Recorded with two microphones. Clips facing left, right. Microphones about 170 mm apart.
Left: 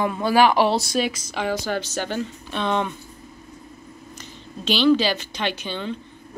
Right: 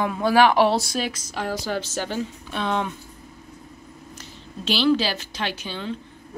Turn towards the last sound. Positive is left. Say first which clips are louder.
# left 2 dB
turn(degrees=-5)  # may be behind; listen again after turning